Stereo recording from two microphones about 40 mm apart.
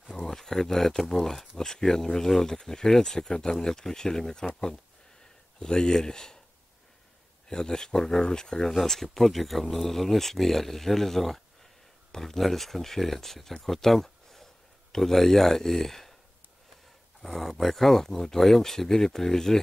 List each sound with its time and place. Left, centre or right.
0.1 s speech: centre
5.6 s speech: centre
7.4 s speech: centre
17.2 s speech: centre